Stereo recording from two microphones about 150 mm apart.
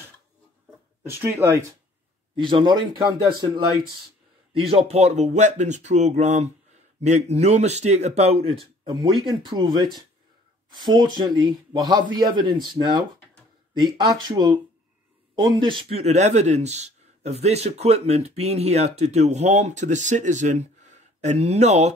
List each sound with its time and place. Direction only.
1.0 s speech: 15° right (ahead or behind)
2.3 s speech: 35° right (ahead or behind)
10.7 s a man's voice: 30° right (ahead or behind); by 21.9 s 50° right (ahead or behind)